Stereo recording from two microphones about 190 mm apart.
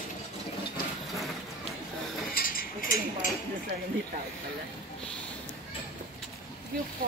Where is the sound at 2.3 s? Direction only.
50° left (ahead or behind).